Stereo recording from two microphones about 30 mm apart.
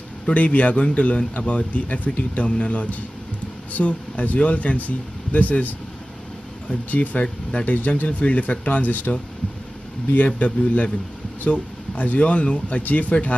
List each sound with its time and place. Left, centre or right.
0.3 s speech: left
2.1 s speech: left
12.0 s speech: left
12.8 s speech: left